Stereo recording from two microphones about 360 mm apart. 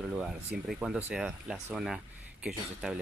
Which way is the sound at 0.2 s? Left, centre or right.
Centre.